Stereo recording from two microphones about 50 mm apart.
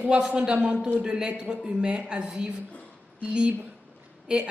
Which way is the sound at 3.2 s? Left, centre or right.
Right.